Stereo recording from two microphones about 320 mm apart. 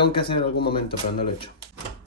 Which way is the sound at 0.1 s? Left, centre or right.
Centre.